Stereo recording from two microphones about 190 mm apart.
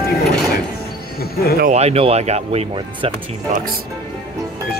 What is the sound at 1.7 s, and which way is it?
Speech, 35° right (ahead or behind).